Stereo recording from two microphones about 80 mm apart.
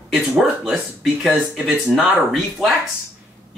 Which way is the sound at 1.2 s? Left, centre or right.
Centre.